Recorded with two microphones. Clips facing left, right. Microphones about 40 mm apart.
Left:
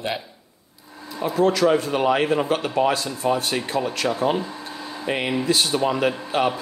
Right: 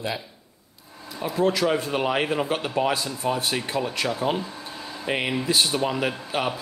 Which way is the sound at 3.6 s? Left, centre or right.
Centre.